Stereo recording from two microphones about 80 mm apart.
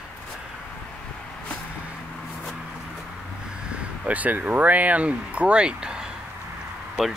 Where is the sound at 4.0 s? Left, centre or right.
Centre.